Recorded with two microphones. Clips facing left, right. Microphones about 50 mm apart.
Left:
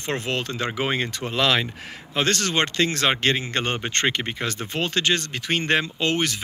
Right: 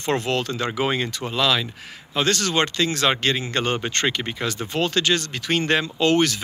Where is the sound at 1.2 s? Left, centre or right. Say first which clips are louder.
Left 2 dB; left.